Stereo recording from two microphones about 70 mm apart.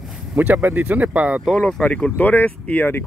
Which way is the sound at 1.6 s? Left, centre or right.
Centre.